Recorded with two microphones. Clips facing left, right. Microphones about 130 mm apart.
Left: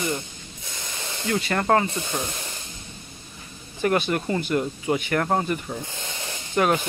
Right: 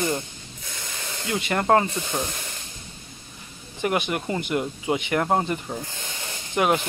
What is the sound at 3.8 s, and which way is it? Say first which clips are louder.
Speech: left 2 dB; 15° right (ahead or behind).